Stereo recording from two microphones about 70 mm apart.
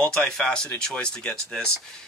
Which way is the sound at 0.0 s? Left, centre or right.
Centre.